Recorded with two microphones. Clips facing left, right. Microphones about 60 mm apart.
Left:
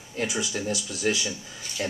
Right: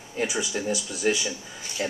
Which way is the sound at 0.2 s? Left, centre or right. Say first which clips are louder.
Right 1 dB; centre.